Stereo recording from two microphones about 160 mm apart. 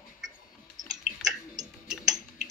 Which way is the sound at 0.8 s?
25° right (ahead or behind).